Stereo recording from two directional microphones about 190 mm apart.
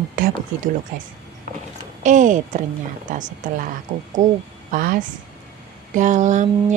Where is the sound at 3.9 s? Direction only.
30° right (ahead or behind).